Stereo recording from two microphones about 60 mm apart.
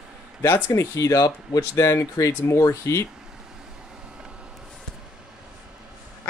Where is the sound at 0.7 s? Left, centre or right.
Left.